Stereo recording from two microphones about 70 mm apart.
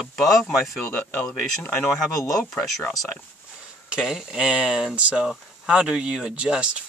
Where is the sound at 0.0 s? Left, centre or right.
Centre.